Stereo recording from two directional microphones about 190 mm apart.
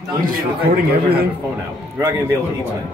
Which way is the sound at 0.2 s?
50° right (ahead or behind).